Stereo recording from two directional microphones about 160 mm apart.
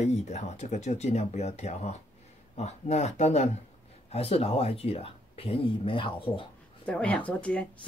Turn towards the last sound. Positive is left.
turn(degrees=5)  # may be behind; listen again after turning